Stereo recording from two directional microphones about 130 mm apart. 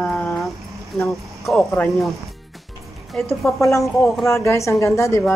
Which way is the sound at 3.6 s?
25° left (ahead or behind).